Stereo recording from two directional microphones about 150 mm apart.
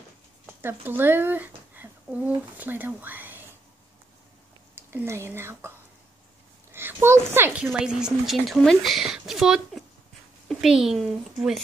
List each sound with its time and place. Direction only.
0.5 s speech: 15° right (ahead or behind)
4.7 s a woman's voice: 15° right (ahead or behind)
6.7 s speech: 15° right (ahead or behind)